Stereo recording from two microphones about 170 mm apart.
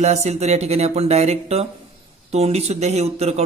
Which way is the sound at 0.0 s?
40° right (ahead or behind).